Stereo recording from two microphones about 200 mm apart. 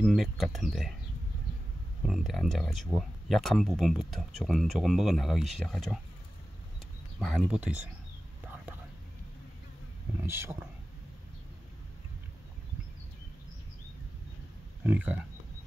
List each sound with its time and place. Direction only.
0.0 s speech: centre (ahead or behind)
2.0 s speech: centre (ahead or behind)
7.2 s speech: centre (ahead or behind)
10.2 s speech: 10° right (ahead or behind)
14.8 s speech: 5° right (ahead or behind)